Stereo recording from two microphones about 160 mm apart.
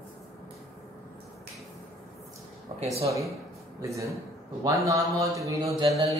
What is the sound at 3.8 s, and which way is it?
Speech, 20° right (ahead or behind).